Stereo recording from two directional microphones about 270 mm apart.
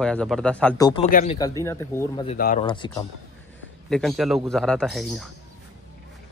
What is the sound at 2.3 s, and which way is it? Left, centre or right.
Speech, left.